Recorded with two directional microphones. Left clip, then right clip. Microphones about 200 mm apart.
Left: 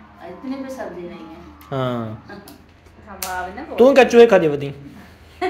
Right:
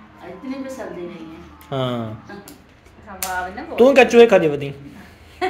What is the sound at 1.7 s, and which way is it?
Speech, 5° left (ahead or behind).